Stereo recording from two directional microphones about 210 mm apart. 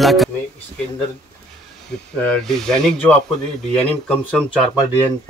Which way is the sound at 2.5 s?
5° left (ahead or behind).